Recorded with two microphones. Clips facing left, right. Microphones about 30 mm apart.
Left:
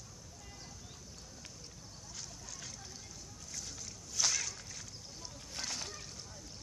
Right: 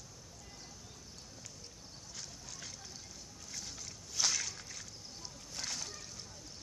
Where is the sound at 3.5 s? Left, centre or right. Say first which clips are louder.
Even; centre.